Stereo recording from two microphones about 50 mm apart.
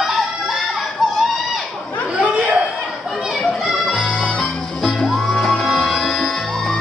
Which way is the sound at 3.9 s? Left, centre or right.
Centre.